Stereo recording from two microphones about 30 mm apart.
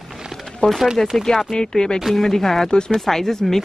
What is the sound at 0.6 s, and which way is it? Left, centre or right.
Speech, left.